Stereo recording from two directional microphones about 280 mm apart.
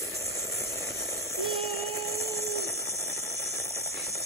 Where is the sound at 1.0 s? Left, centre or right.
Centre.